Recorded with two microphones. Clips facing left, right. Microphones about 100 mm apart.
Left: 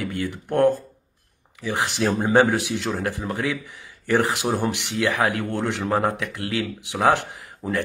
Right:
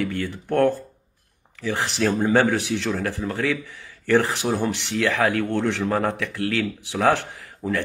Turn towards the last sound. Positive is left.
turn(degrees=20)  # may be behind; listen again after turning